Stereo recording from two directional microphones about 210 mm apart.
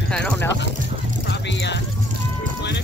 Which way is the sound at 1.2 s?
55° left (ahead or behind).